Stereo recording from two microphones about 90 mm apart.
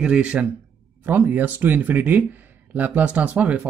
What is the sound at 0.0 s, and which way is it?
Speech, 10° right (ahead or behind).